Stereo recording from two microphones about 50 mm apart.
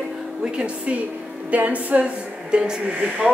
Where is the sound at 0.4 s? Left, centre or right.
Centre.